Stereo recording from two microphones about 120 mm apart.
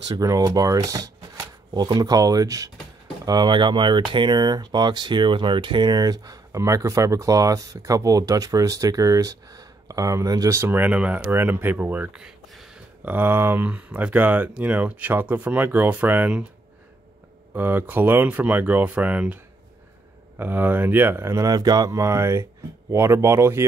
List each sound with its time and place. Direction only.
0.2 s speech: 30° right (ahead or behind); by 16.4 s 10° right (ahead or behind)
17.6 s speech: 15° right (ahead or behind)